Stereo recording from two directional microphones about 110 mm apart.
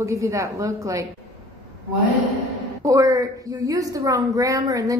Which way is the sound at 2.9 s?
30° right (ahead or behind).